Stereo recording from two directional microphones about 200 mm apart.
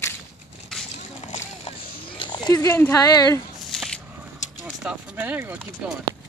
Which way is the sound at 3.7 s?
Centre (ahead or behind).